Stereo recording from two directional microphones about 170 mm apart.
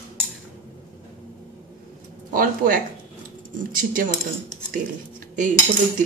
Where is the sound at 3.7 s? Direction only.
55° right (ahead or behind).